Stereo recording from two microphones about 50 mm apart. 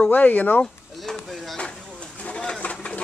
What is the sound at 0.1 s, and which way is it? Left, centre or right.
Speech, left.